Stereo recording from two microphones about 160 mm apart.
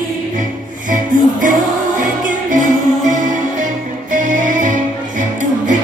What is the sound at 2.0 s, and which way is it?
Music, 55° right (ahead or behind).